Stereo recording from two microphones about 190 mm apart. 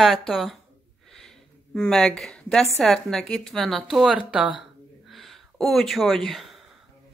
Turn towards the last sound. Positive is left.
turn(degrees=0)  # may be behind; listen again after turning